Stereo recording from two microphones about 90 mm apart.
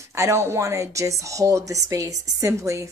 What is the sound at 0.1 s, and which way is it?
Speech, 35° right (ahead or behind).